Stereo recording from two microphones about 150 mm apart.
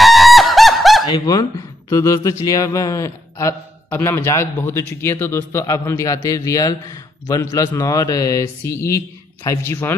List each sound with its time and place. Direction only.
0.0 s honk: centre (ahead or behind)
1.1 s speech: 25° left (ahead or behind)